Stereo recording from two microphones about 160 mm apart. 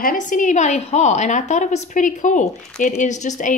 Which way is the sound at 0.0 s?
55° left (ahead or behind).